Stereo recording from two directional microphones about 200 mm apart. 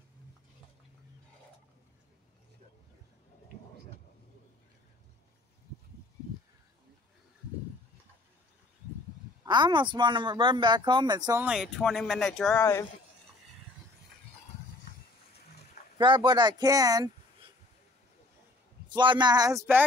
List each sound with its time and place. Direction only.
9.4 s speech: 20° right (ahead or behind)
11.4 s speech: centre (ahead or behind)
16.0 s speech: 25° right (ahead or behind)
18.9 s speech: 20° right (ahead or behind)